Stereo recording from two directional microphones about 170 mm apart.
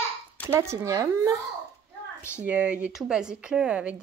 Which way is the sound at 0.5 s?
15° right (ahead or behind).